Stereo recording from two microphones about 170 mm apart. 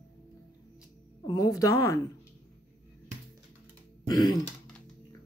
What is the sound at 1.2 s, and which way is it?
Speech, 20° left (ahead or behind).